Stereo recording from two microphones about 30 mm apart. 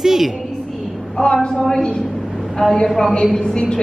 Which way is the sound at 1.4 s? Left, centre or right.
Left.